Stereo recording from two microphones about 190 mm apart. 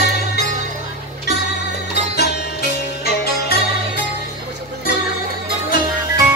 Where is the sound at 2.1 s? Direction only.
55° left (ahead or behind).